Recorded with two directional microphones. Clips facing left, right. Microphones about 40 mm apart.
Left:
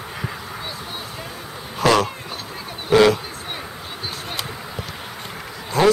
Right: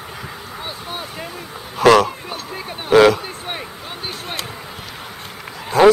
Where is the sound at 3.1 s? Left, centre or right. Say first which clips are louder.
Right 3 dB; right.